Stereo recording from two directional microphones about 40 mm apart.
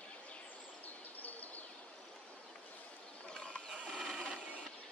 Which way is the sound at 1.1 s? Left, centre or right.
Left.